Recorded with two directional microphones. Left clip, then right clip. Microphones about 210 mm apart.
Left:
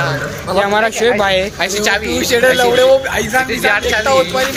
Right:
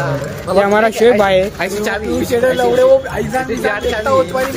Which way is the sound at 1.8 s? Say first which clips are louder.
Left 4 dB; 30° right (ahead or behind).